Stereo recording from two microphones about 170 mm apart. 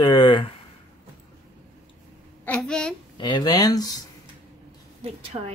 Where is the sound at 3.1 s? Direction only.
25° left (ahead or behind).